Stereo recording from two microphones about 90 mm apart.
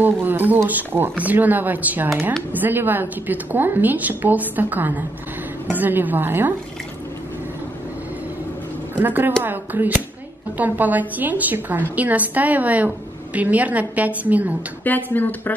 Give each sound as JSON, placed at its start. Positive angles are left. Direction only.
{"t": 0.0, "sound": "a woman's voice", "side_deg": -20}
{"t": 8.9, "sound": "a woman's voice", "side_deg": -20}
{"t": 14.9, "sound": "speech", "side_deg": 20}